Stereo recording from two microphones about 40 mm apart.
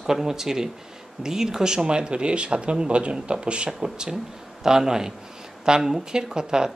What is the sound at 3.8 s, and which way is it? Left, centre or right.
Speech, centre.